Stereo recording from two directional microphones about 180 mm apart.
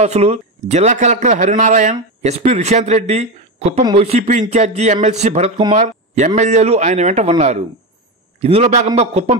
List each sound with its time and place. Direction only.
0.0 s a man's voice: 35° right (ahead or behind)